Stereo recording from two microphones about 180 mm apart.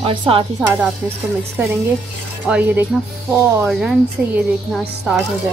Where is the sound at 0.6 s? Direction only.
10° right (ahead or behind).